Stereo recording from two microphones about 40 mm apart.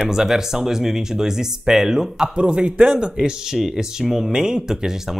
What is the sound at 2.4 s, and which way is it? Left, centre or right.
A man's voice, right.